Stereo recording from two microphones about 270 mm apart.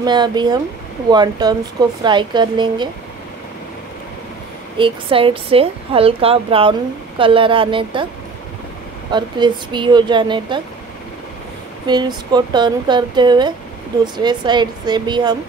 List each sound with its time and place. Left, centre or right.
0.0 s speech: centre
4.7 s a woman's voice: centre
9.1 s speech: centre
11.9 s speech: centre